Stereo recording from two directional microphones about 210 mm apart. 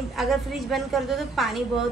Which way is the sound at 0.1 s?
Centre (ahead or behind).